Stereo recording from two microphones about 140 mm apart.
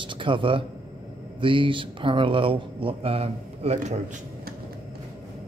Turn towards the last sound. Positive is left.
turn(degrees=-55)  # may be behind; listen again after turning